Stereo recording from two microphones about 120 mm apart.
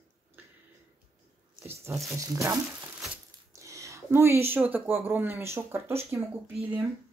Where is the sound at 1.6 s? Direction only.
20° right (ahead or behind).